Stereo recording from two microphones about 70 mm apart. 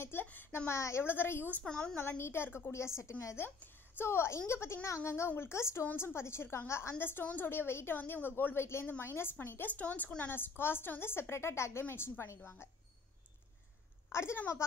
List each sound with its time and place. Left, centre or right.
0.0 s a woman's voice: left
1.6 s a woman's voice: centre
2.0 s a woman's voice: left
14.1 s a woman's voice: left